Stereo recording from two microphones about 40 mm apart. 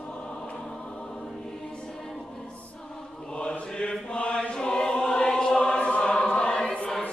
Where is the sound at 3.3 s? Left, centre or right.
Left.